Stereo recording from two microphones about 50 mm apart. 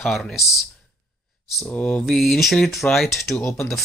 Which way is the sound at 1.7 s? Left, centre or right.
Left.